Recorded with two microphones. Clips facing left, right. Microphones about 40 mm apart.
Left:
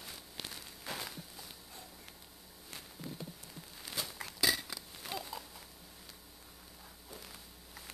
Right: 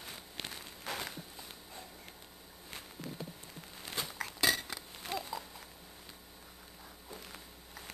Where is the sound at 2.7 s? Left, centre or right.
Centre.